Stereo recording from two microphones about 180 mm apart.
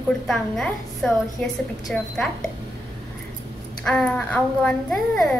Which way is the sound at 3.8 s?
5° left (ahead or behind).